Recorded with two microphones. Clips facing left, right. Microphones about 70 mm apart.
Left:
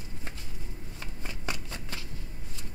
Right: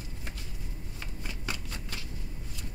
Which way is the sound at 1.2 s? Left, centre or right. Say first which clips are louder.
Left 1 dB; left.